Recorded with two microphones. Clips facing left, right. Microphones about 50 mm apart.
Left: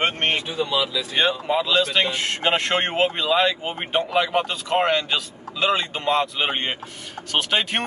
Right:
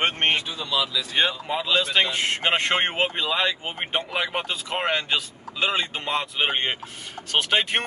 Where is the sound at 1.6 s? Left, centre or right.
Centre.